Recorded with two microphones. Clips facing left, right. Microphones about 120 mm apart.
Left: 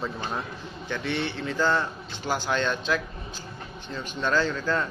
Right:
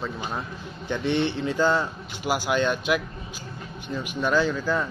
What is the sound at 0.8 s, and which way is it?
A man's voice, 15° right (ahead or behind).